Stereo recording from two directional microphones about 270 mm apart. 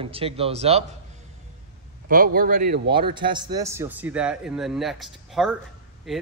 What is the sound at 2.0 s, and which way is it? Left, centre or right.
Speech, right.